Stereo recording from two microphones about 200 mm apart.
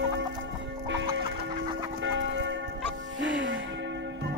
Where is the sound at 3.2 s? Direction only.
70° right (ahead or behind).